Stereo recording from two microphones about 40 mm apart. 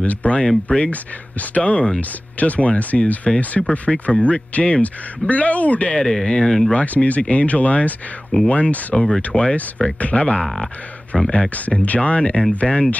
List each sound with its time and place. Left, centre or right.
0.0 s speech: left
0.7 s speech: left
5.9 s speech: left
6.7 s speech: left
11.8 s speech: left